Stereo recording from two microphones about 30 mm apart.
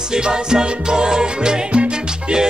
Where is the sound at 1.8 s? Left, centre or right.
Right.